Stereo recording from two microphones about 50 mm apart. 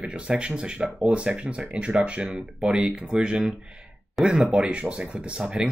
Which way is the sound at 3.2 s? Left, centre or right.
Centre.